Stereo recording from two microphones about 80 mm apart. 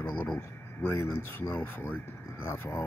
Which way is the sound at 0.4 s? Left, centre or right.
Left.